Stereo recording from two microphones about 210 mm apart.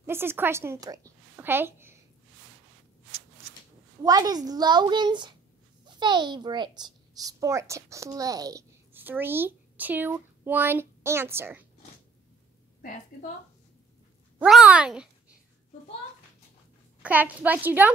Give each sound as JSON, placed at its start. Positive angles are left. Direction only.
{"t": 0.0, "sound": "a woman's voice", "side_deg": -10}
{"t": 4.0, "sound": "a woman's voice", "side_deg": -15}
{"t": 14.4, "sound": "speech", "side_deg": -5}
{"t": 17.0, "sound": "a woman's voice", "side_deg": -5}